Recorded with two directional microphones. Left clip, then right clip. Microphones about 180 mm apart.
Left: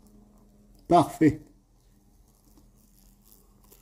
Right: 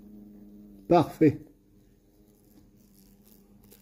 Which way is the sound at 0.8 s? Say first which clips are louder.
Left 1 dB; 15° left (ahead or behind).